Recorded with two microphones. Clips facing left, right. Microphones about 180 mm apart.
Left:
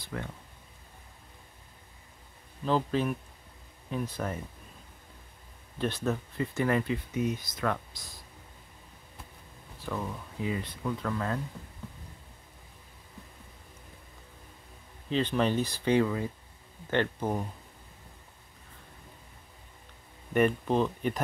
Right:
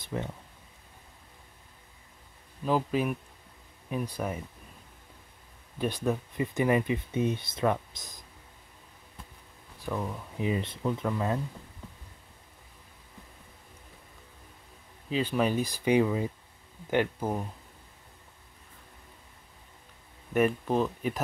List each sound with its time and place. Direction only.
0.0 s speech: 20° right (ahead or behind)
2.6 s speech: 10° right (ahead or behind)
5.8 s speech: 10° right (ahead or behind)
7.1 s speech: 30° right (ahead or behind)
9.8 s speech: 10° right (ahead or behind)
15.0 s speech: 5° right (ahead or behind)
20.3 s speech: 5° right (ahead or behind)